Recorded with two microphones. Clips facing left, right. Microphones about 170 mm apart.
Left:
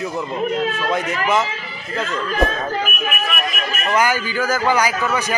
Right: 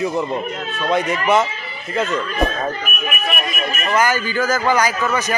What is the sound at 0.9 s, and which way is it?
Speech, centre (ahead or behind).